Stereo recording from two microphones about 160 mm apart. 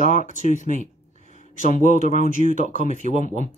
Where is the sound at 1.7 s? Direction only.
55° left (ahead or behind).